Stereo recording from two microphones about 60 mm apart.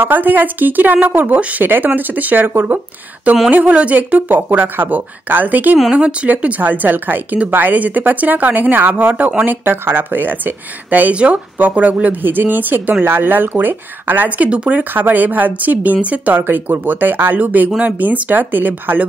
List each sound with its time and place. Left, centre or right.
0.0 s a woman's voice: right
9.1 s speech: centre
9.4 s a woman's voice: right
14.5 s speech: centre
16.3 s a woman's voice: right